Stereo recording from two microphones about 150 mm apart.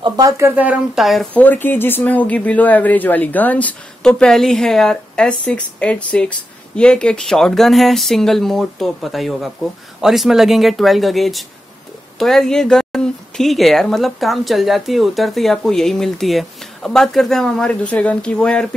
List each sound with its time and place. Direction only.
0.0 s speech: 25° right (ahead or behind)
0.6 s speech: 5° right (ahead or behind)
1.3 s speech: 10° left (ahead or behind)